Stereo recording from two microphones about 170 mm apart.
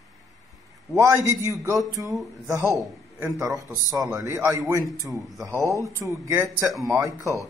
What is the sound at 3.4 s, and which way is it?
A man's voice, 20° right (ahead or behind).